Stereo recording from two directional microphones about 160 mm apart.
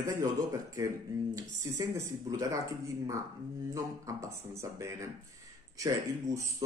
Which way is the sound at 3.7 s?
20° right (ahead or behind).